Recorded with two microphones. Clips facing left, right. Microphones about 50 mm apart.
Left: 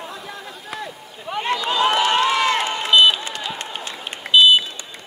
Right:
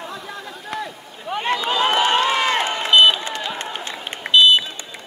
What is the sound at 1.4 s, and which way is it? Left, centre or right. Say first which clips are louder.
Run: right 1 dB; right.